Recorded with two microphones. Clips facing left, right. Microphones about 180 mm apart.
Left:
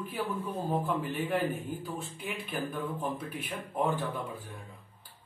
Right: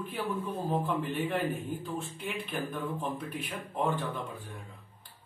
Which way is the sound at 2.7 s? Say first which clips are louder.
Even; 5° left (ahead or behind).